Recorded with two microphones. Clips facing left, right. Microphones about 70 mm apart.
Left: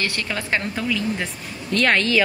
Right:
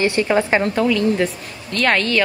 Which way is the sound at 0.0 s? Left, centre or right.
Right.